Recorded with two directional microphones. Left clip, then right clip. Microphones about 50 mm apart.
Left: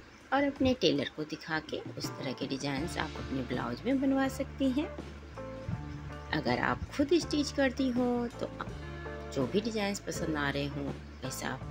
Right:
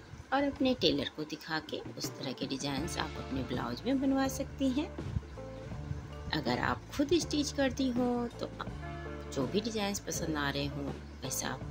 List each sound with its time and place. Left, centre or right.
0.3 s speech: left
6.3 s speech: left